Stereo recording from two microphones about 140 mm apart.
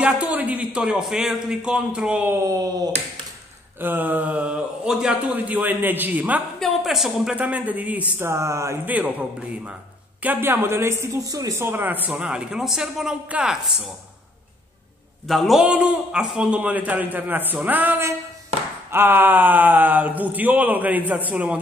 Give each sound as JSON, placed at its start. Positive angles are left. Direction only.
{"t": 0.0, "sound": "a man's voice", "side_deg": -10}
{"t": 2.4, "sound": "speech", "side_deg": -25}
{"t": 3.8, "sound": "a man's voice", "side_deg": -15}
{"t": 10.2, "sound": "a man's voice", "side_deg": -15}
{"t": 15.2, "sound": "a man's voice", "side_deg": 0}